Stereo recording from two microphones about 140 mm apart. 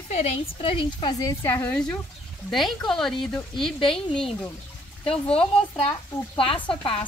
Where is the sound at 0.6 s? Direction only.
40° left (ahead or behind).